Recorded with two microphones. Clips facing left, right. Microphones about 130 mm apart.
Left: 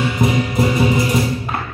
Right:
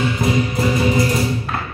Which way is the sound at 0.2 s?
20° left (ahead or behind).